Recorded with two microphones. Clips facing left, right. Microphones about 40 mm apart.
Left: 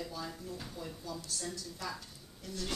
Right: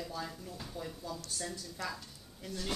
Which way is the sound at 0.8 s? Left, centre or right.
Centre.